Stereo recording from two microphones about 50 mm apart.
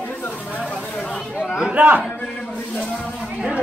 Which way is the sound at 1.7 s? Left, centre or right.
Right.